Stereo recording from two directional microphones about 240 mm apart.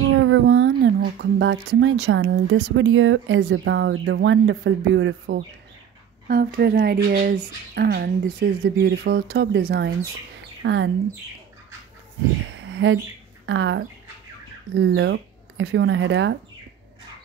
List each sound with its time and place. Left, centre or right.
0.1 s speech: right
6.2 s speech: right
12.6 s a sound: right
13.5 s speech: right